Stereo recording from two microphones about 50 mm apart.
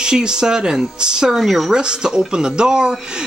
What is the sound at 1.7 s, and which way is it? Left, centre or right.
Speech, centre.